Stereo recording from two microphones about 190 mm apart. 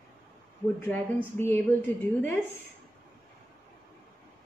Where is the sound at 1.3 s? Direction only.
10° left (ahead or behind).